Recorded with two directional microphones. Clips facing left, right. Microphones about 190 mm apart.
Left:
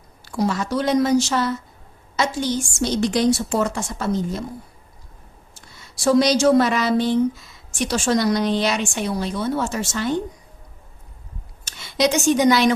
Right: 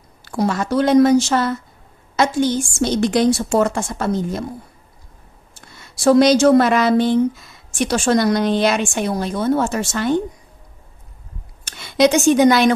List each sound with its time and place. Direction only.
0.2 s a woman's voice: 55° right (ahead or behind)
5.5 s a woman's voice: 55° right (ahead or behind)
11.6 s a woman's voice: 55° right (ahead or behind)